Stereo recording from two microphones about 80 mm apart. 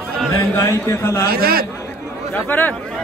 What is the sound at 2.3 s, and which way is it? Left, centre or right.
Speech, left.